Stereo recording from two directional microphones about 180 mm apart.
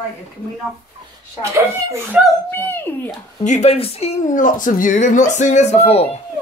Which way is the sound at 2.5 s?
10° left (ahead or behind).